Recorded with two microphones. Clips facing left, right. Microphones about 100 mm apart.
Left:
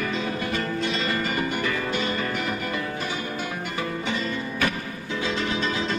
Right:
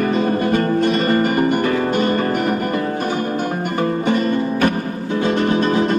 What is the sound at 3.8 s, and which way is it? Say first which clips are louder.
Music: right 11 dB; 50° right (ahead or behind).